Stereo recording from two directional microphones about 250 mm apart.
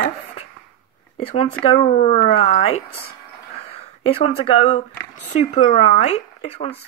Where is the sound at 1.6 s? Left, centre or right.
Left.